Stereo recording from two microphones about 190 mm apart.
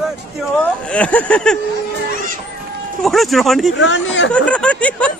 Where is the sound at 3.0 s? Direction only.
Centre (ahead or behind).